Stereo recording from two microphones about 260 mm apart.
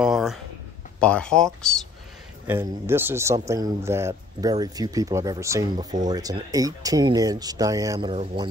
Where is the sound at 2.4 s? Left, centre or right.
Centre.